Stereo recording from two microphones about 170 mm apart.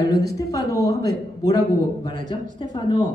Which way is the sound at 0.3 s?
20° left (ahead or behind).